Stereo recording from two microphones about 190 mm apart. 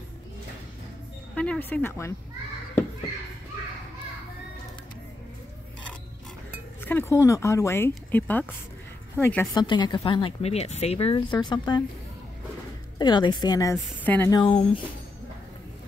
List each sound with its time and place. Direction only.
1.3 s speech: 5° left (ahead or behind)
6.8 s speech: 10° left (ahead or behind)
9.6 s speech: 25° left (ahead or behind)
13.0 s speech: 25° left (ahead or behind)
14.3 s speech: 25° left (ahead or behind)